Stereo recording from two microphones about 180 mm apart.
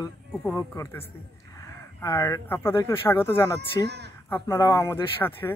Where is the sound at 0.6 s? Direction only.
15° left (ahead or behind).